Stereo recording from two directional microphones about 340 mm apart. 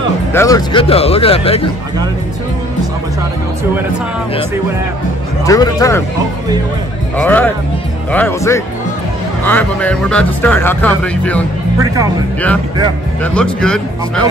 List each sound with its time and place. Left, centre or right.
0.3 s speech: centre
5.4 s speech: centre
7.2 s speech: centre
13.2 s speech: centre